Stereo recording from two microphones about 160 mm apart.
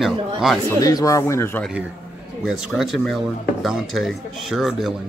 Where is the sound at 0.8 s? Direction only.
20° left (ahead or behind).